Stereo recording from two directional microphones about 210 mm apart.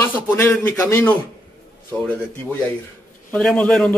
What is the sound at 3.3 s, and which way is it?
Speech, 5° left (ahead or behind).